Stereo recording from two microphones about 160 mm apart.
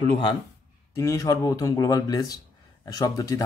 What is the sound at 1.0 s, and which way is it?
Speech, 20° left (ahead or behind).